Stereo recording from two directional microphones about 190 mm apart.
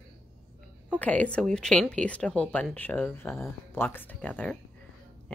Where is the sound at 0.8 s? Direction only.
5° left (ahead or behind).